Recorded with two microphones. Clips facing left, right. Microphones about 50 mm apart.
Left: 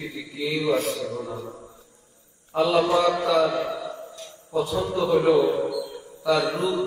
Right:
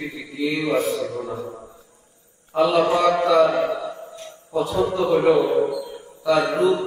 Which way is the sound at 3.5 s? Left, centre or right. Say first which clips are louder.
Right 5 dB; right.